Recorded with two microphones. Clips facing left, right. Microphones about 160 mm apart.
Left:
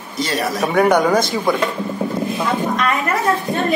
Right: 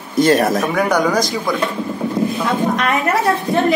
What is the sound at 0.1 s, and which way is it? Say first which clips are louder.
Speech: right 8 dB; 50° right (ahead or behind).